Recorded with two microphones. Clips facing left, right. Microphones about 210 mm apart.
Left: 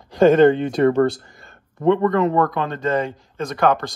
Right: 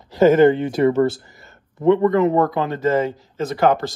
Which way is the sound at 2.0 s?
20° right (ahead or behind).